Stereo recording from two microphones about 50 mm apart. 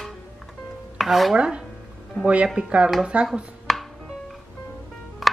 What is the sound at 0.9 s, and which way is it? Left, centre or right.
Chopping, centre.